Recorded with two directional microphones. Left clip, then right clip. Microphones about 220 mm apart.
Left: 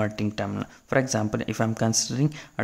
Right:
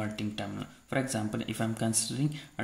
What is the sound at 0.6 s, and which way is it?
Speech, 30° left (ahead or behind).